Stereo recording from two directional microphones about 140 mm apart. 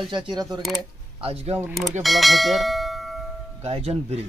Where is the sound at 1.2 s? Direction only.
45° right (ahead or behind).